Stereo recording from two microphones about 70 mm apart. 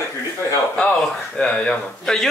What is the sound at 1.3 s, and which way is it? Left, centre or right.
Speech, centre.